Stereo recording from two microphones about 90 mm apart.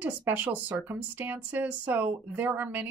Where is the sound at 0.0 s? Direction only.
20° right (ahead or behind).